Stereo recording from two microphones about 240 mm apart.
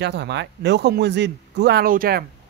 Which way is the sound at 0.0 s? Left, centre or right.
Right.